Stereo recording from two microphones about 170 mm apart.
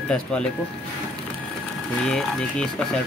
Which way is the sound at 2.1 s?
5° left (ahead or behind).